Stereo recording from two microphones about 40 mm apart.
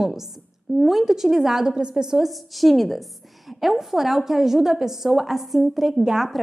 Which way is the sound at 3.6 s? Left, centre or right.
Centre.